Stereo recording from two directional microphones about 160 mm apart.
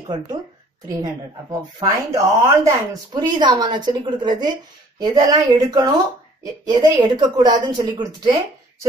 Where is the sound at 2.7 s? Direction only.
25° right (ahead or behind).